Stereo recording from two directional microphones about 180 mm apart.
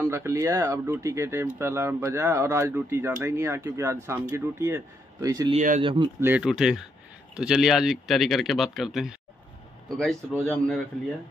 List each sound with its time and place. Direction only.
0.0 s speech: 15° right (ahead or behind)
5.5 s speech: 45° right (ahead or behind)
5.8 s speech: 25° right (ahead or behind)
6.2 s speech: 5° right (ahead or behind)